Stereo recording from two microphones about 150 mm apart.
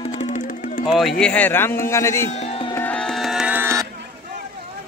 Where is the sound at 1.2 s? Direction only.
10° left (ahead or behind).